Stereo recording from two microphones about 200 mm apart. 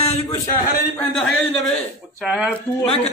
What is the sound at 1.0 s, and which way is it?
A man's voice, 5° left (ahead or behind).